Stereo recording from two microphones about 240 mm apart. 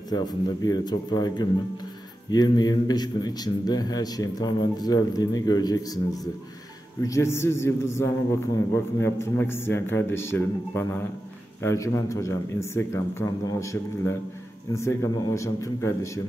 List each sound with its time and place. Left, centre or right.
0.1 s a man's voice: centre